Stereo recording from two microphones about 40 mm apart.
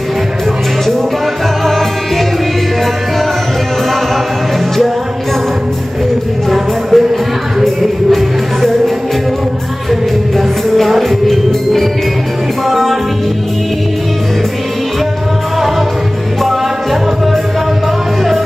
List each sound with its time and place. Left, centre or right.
6.5 s music: centre
10.3 s music: centre